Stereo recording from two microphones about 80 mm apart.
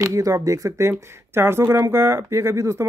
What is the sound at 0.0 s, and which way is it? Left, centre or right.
Speech, right.